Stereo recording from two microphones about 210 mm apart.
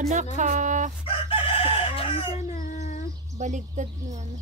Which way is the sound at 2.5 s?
40° left (ahead or behind).